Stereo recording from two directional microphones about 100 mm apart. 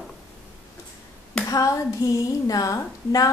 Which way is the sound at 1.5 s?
35° left (ahead or behind).